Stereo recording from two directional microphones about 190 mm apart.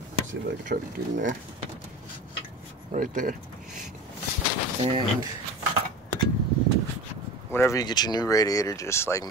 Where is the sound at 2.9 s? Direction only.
45° right (ahead or behind).